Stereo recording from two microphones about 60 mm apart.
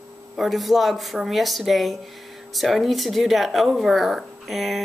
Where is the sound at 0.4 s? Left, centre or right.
Centre.